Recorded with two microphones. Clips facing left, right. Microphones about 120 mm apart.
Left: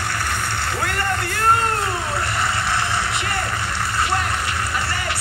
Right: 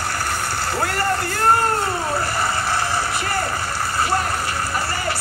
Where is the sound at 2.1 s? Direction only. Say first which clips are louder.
Right 1 dB; 40° right (ahead or behind).